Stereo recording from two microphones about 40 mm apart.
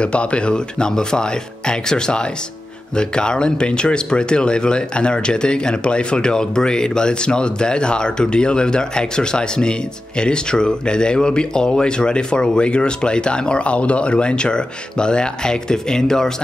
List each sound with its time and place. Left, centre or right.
0.0 s speech: left